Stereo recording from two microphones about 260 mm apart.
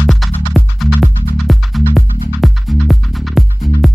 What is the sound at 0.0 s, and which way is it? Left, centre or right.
Music, centre.